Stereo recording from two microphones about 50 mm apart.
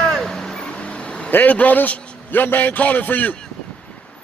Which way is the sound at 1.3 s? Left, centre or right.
Left.